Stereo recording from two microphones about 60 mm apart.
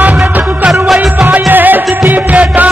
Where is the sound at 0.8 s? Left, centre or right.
Centre.